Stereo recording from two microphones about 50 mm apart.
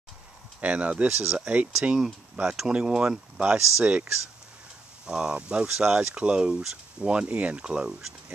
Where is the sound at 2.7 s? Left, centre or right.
Centre.